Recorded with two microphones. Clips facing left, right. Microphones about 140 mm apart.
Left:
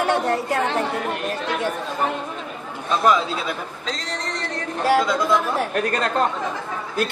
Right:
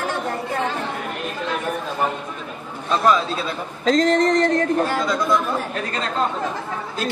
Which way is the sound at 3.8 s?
50° right (ahead or behind).